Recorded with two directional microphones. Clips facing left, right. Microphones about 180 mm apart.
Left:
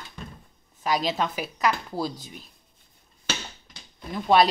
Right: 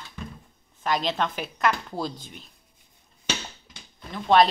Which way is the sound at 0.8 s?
5° left (ahead or behind).